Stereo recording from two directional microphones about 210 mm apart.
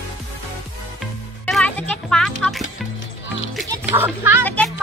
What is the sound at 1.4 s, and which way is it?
Music, 5° left (ahead or behind).